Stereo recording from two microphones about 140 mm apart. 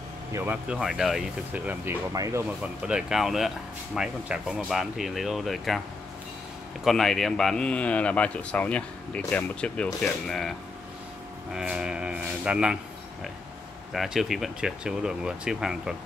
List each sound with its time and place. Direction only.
0.3 s speech: 20° right (ahead or behind)
0.7 s speech: 5° right (ahead or behind)
2.1 s speech: 25° right (ahead or behind)
2.6 s speech: 5° right (ahead or behind)
6.8 s speech: centre (ahead or behind)
11.5 s speech: 5° right (ahead or behind)
13.9 s speech: 5° right (ahead or behind)